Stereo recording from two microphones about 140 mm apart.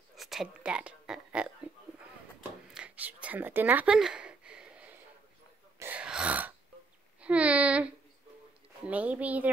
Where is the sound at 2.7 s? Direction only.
10° right (ahead or behind).